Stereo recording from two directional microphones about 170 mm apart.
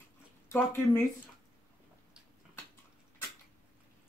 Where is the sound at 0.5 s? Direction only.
15° left (ahead or behind).